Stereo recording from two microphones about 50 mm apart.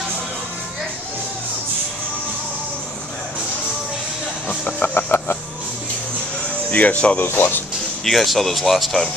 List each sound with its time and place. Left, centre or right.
4.5 s speech: left
4.8 s music: left
6.7 s speech: left
7.2 s speech: left
8.0 s speech: centre